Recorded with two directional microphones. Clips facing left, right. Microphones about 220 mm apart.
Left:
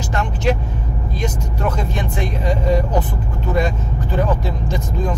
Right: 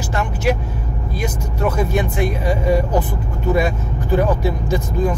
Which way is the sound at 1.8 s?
10° right (ahead or behind).